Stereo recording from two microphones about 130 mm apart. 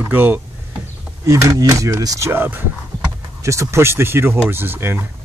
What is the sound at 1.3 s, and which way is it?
Speech, 25° right (ahead or behind).